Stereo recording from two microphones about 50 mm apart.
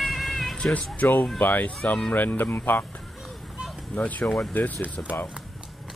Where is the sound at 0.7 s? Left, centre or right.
Left.